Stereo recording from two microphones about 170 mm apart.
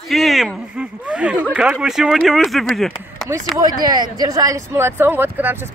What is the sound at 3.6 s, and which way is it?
Speech, 20° right (ahead or behind).